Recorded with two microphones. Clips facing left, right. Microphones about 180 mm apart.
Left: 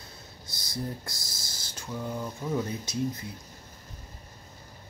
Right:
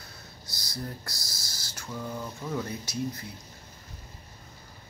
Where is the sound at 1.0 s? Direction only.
20° left (ahead or behind).